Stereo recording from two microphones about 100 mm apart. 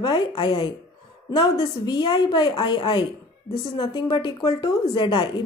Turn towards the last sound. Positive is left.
turn(degrees=55)  # may be behind; listen again after turning